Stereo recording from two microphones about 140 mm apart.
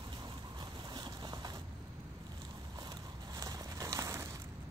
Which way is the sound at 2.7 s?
30° right (ahead or behind).